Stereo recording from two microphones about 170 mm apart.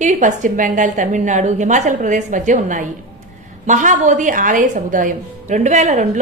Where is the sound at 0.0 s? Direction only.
45° right (ahead or behind).